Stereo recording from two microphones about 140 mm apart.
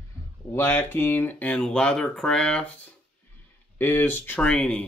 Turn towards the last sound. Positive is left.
turn(degrees=5)  # may be behind; listen again after turning